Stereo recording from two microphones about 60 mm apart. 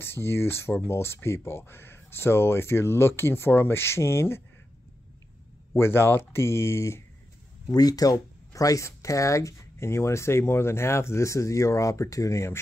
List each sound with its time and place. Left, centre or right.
0.0 s speech: left
5.7 s speech: left
7.7 s speech: left